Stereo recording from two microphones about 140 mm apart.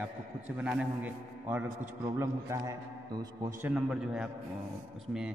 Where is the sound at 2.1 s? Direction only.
25° right (ahead or behind).